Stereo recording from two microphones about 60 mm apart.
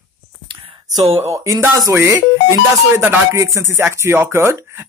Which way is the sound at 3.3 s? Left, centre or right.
Right.